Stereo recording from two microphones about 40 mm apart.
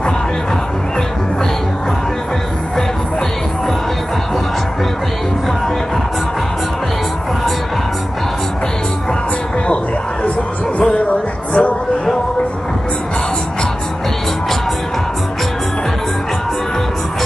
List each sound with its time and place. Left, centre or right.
11.1 s music: left